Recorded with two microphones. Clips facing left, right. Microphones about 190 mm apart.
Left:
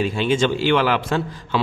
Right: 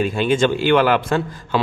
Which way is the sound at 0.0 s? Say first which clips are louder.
Right 2 dB; 50° right (ahead or behind).